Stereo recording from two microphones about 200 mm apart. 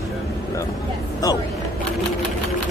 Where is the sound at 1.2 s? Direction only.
15° left (ahead or behind).